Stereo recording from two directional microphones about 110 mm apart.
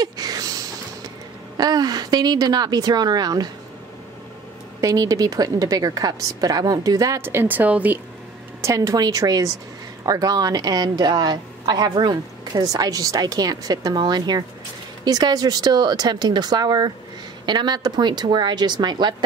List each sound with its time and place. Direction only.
0.0 s a sound: 35° right (ahead or behind)
1.6 s a woman's voice: 35° right (ahead or behind)
4.8 s a woman's voice: 30° right (ahead or behind)
7.2 s speech: 20° right (ahead or behind)
8.5 s a woman's voice: 30° right (ahead or behind)